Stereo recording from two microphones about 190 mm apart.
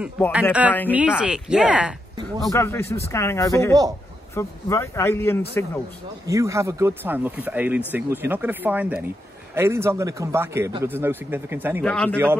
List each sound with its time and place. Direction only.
0.3 s speech: 5° right (ahead or behind)
2.4 s speech: 15° left (ahead or behind)
6.2 s speech: 15° right (ahead or behind)
11.8 s speech: 5° left (ahead or behind)